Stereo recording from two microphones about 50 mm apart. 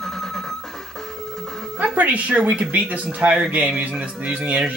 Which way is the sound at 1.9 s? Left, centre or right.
Right.